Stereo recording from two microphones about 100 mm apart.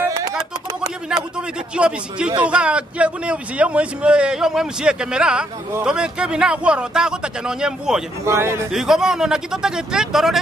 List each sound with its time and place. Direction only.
0.0 s a sound: 35° right (ahead or behind)
1.8 s a man's voice: 10° right (ahead or behind)
8.3 s a man's voice: 25° right (ahead or behind)
8.7 s speech: 5° right (ahead or behind)